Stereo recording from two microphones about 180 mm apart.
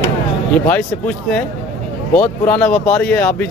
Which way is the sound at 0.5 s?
10° left (ahead or behind).